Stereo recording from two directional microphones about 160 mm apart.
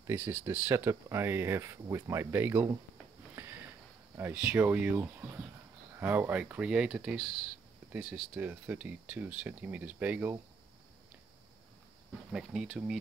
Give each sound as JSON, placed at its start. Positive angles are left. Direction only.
{"t": 0.0, "sound": "speech", "side_deg": -10}
{"t": 4.2, "sound": "speech", "side_deg": -10}
{"t": 12.3, "sound": "speech", "side_deg": -5}